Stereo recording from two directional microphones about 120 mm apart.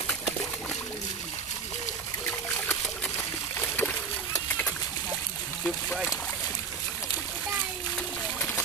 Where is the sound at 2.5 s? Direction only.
15° left (ahead or behind).